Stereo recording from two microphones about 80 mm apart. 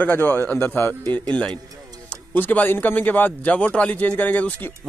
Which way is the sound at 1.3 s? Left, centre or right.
Centre.